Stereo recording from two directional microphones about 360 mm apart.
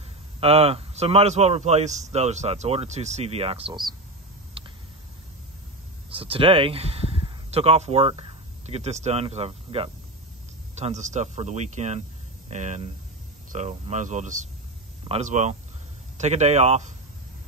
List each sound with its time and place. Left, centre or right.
0.4 s speech: centre
4.6 s a sound: centre
6.0 s speech: centre